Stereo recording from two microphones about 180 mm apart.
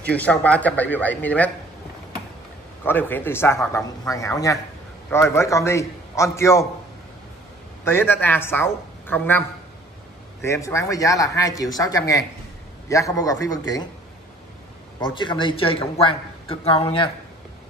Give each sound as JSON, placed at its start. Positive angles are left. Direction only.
{"t": 0.1, "sound": "a man's voice", "side_deg": 10}
{"t": 2.8, "sound": "a man's voice", "side_deg": 10}
{"t": 7.8, "sound": "a man's voice", "side_deg": 10}
{"t": 10.4, "sound": "speech", "side_deg": 15}
{"t": 15.0, "sound": "speech", "side_deg": 25}